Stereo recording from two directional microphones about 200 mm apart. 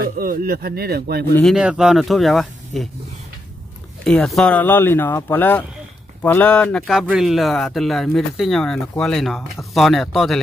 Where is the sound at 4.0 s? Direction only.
5° left (ahead or behind).